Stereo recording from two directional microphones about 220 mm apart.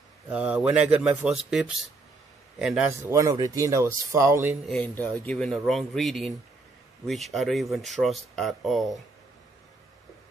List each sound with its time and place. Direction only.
0.3 s speech: 5° right (ahead or behind)
2.9 s speech: 15° right (ahead or behind)
4.6 s speech: 5° left (ahead or behind)